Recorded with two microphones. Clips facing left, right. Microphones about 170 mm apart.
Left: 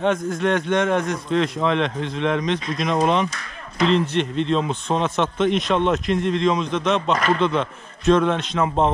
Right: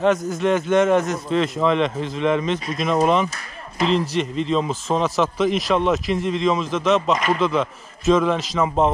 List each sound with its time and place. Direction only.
0.0 s a man's voice: centre (ahead or behind)